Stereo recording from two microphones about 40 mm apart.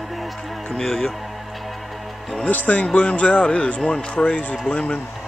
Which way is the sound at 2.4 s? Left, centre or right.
Left.